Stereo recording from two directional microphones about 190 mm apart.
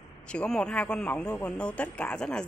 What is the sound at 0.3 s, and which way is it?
Speech, 5° left (ahead or behind).